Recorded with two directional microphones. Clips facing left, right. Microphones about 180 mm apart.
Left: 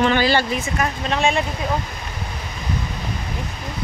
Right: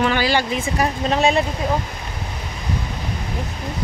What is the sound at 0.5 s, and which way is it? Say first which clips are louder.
Speech: right 2 dB; 30° right (ahead or behind).